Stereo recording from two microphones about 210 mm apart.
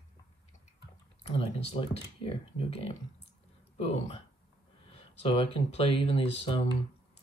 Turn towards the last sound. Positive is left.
turn(degrees=25)  # may be behind; listen again after turning